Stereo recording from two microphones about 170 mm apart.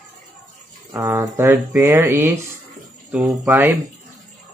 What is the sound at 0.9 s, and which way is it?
Speech, 20° right (ahead or behind).